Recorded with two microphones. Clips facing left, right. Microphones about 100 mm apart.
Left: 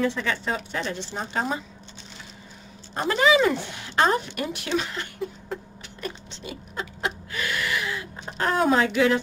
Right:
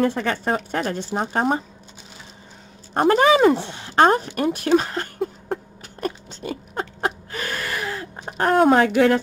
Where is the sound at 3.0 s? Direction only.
50° right (ahead or behind).